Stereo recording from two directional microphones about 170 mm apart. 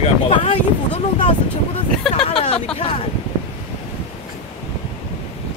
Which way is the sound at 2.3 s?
35° left (ahead or behind).